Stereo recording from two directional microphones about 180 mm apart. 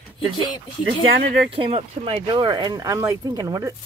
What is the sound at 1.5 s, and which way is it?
Speech, 30° right (ahead or behind).